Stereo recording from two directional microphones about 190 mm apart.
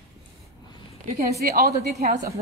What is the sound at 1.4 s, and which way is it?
Speech, 55° right (ahead or behind).